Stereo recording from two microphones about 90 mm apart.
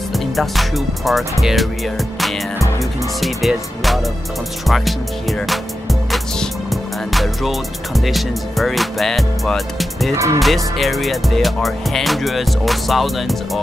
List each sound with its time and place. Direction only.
0.1 s music: centre (ahead or behind)
2.8 s speech: centre (ahead or behind)
4.6 s music: centre (ahead or behind)
10.1 s speech: 35° right (ahead or behind)
10.4 s music: centre (ahead or behind)